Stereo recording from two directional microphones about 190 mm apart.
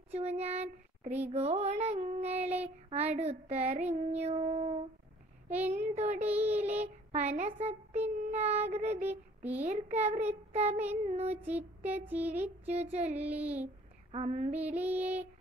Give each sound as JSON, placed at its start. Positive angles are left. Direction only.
{"t": 0.1, "sound": "child singing", "side_deg": -35}
{"t": 1.3, "sound": "female singing", "side_deg": -35}
{"t": 6.2, "sound": "music", "side_deg": -10}
{"t": 7.1, "sound": "female singing", "side_deg": -35}
{"t": 9.0, "sound": "music", "side_deg": -10}
{"t": 9.7, "sound": "female singing", "side_deg": -35}
{"t": 11.4, "sound": "a sound", "side_deg": -10}
{"t": 12.1, "sound": "music", "side_deg": -10}
{"t": 12.6, "sound": "female singing", "side_deg": -35}
{"t": 13.1, "sound": "music", "side_deg": -10}
{"t": 14.1, "sound": "female singing", "side_deg": -35}
{"t": 14.5, "sound": "music", "side_deg": -10}